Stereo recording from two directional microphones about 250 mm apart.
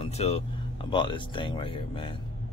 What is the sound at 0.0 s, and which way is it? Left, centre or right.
Speech, left.